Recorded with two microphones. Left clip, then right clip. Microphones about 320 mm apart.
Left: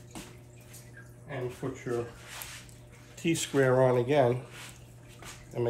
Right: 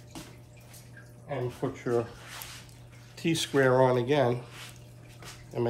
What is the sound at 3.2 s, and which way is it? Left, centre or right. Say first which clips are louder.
Speech: right 1 dB; centre.